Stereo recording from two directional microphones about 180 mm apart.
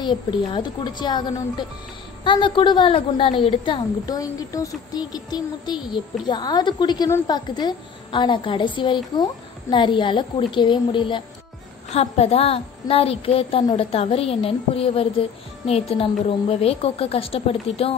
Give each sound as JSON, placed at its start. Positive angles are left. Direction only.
{"t": 0.0, "sound": "a woman's voice", "side_deg": 25}